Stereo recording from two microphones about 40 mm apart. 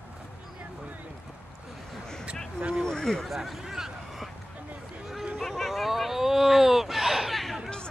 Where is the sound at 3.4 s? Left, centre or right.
Centre.